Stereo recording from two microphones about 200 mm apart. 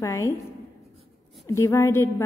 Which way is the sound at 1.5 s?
15° left (ahead or behind).